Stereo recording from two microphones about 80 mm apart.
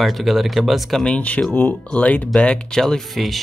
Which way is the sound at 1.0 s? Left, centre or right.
Centre.